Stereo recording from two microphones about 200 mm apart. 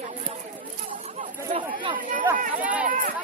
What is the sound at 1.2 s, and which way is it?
Speech, 25° right (ahead or behind).